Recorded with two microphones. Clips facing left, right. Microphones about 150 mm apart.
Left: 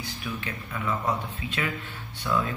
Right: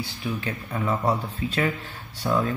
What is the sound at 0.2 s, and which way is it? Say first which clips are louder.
Speech: right 5 dB; 35° right (ahead or behind).